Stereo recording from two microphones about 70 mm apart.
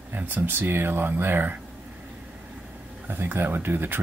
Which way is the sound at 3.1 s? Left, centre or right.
Right.